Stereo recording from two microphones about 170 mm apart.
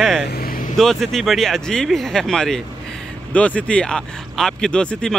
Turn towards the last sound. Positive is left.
turn(degrees=5)  # may be behind; listen again after turning